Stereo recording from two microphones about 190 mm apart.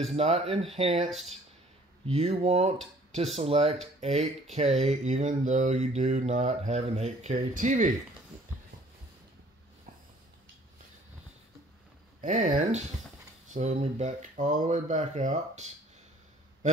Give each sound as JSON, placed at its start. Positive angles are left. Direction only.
{"t": 0.1, "sound": "speech", "side_deg": -30}
{"t": 2.0, "sound": "speech", "side_deg": -30}
{"t": 12.2, "sound": "speech", "side_deg": -45}